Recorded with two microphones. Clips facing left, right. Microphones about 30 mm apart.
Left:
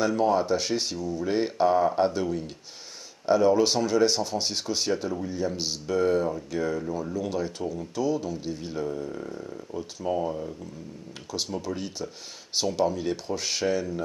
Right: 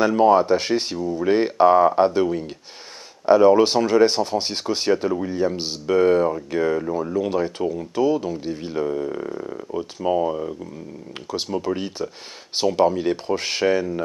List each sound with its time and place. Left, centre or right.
0.0 s speech: right
10.0 s speech: right
11.5 s speech: right